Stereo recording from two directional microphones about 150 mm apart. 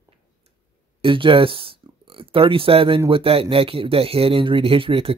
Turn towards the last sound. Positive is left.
turn(degrees=-35)  # may be behind; listen again after turning